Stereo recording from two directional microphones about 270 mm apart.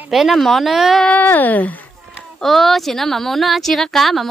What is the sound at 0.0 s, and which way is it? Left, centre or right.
A woman's voice, centre.